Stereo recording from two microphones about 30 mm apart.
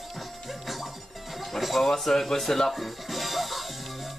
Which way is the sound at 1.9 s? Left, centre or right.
Centre.